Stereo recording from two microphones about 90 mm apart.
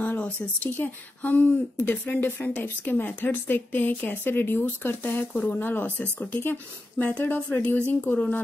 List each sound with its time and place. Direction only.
0.0 s speech: 20° left (ahead or behind)